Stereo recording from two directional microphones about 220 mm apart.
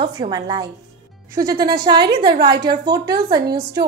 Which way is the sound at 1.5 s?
45° right (ahead or behind).